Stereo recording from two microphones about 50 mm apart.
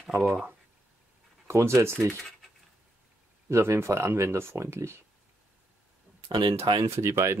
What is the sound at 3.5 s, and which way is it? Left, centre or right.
Speech, right.